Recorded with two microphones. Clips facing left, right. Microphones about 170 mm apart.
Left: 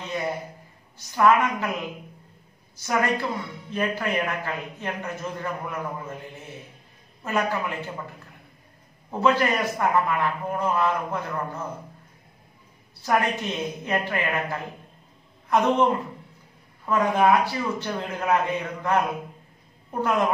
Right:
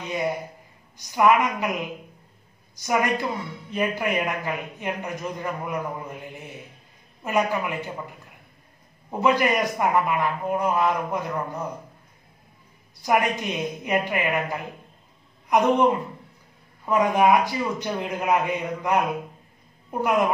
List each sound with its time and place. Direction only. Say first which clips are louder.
0.9 s a man's voice: right 1 dB; 15° right (ahead or behind)
9.2 s a man's voice: right 1 dB; 15° right (ahead or behind)
13.0 s a man's voice: right 1 dB; 15° right (ahead or behind)